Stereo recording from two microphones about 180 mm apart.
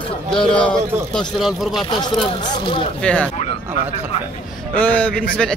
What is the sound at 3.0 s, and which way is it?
Speech, 5° left (ahead or behind).